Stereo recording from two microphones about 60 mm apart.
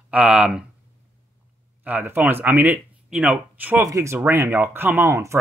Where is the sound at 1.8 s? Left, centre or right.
Right.